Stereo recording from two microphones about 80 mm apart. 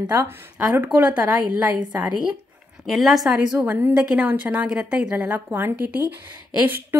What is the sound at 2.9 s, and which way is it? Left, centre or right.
Speech, centre.